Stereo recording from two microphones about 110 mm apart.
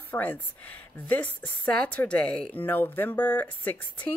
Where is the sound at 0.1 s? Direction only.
15° left (ahead or behind).